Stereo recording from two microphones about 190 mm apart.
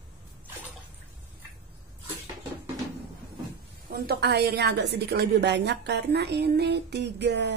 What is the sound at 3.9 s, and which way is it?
A woman's voice, 60° right (ahead or behind).